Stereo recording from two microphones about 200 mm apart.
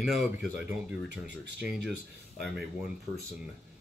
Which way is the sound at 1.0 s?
55° right (ahead or behind).